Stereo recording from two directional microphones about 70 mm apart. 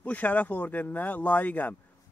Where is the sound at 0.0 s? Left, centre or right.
Left.